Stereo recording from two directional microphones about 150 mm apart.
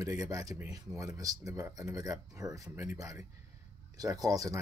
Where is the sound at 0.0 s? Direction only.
20° right (ahead or behind).